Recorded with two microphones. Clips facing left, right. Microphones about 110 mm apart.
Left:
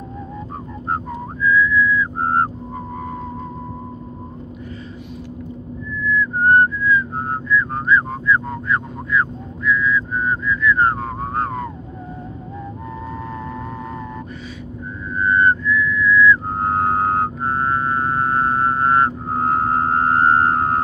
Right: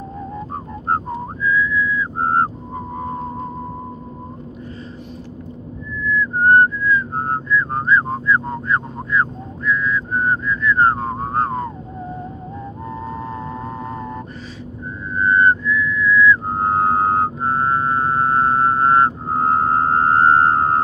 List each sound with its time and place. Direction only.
0.8 s whistling: 40° right (ahead or behind)
1.4 s whistling: 25° right (ahead or behind)
6.4 s whistling: 30° right (ahead or behind)
13.0 s music: 25° right (ahead or behind)
15.1 s whistling: 25° right (ahead or behind)